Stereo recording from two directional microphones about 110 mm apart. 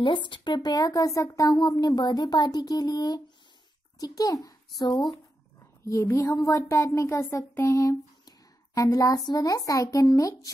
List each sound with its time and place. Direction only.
0.0 s speech: 45° left (ahead or behind)
5.1 s speech: 30° left (ahead or behind)